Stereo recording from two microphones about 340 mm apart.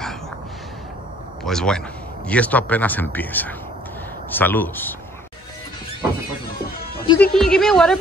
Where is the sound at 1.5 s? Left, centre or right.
Centre.